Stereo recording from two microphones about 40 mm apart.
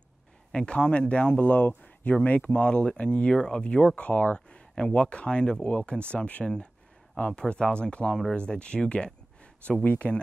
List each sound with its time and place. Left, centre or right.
0.5 s speech: left